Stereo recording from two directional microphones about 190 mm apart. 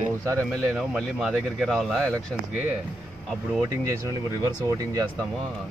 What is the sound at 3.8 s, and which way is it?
Speech, 15° right (ahead or behind).